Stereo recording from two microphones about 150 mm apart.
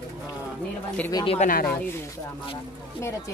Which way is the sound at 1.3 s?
65° left (ahead or behind).